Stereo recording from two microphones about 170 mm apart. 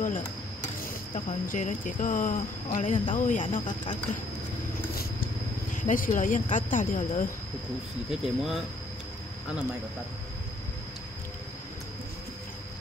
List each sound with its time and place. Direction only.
0.0 s a sound: 50° left (ahead or behind)
1.5 s speech: 50° left (ahead or behind)
5.8 s speech: 50° left (ahead or behind)
8.1 s speech: centre (ahead or behind)